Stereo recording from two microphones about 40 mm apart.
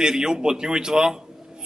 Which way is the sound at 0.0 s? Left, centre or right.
Centre.